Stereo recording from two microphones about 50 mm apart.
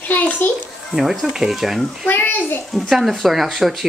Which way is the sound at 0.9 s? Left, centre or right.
Centre.